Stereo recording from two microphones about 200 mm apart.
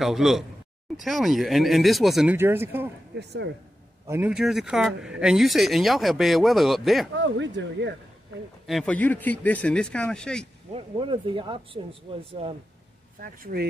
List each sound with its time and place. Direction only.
0.0 s speech: centre (ahead or behind)
2.3 s speech: 10° right (ahead or behind)
3.2 s speech: 60° right (ahead or behind)
4.1 s speech: 5° right (ahead or behind)
7.2 s speech: 65° right (ahead or behind)
8.6 s speech: 5° left (ahead or behind)
10.7 s speech: 25° right (ahead or behind)
13.2 s speech: 50° right (ahead or behind)